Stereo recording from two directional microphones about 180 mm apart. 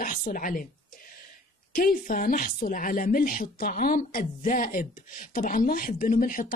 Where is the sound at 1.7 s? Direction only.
50° left (ahead or behind).